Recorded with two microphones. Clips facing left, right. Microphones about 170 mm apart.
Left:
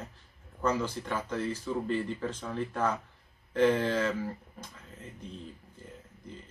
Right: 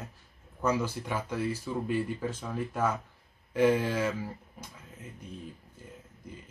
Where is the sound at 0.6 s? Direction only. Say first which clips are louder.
Right 1 dB; 10° right (ahead or behind).